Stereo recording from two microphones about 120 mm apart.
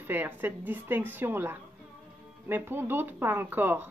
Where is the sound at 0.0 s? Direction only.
15° right (ahead or behind).